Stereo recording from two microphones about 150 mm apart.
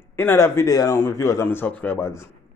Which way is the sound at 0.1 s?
15° left (ahead or behind).